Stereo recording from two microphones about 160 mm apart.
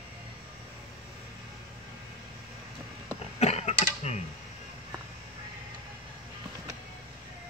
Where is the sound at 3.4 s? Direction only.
45° left (ahead or behind).